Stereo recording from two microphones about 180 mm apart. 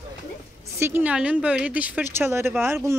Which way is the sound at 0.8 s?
10° right (ahead or behind).